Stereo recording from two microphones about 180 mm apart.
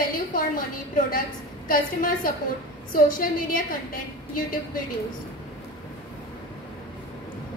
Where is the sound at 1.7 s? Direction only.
50° left (ahead or behind).